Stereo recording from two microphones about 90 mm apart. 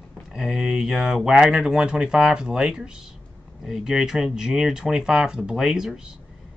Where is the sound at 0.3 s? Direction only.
5° right (ahead or behind).